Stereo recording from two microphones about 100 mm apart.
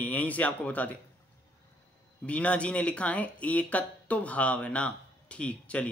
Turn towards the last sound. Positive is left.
turn(degrees=10)  # may be behind; listen again after turning